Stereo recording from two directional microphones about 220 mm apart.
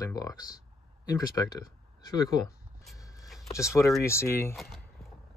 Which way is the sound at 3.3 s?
Centre (ahead or behind).